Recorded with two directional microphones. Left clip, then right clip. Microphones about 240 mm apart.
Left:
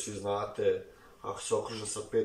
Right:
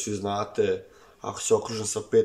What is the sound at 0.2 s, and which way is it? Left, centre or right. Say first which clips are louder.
Speech: right 3 dB; right.